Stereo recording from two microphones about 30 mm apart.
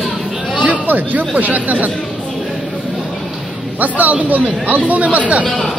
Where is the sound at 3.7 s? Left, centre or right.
Right.